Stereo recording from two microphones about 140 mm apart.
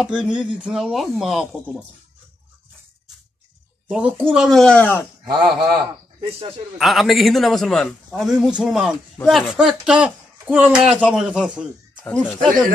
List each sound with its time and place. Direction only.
0.0 s a man's voice: 5° right (ahead or behind)
3.8 s a man's voice: 10° right (ahead or behind); by 5.0 s 10° left (ahead or behind)
5.2 s a man's voice: 30° right (ahead or behind)
6.8 s a man's voice: centre (ahead or behind)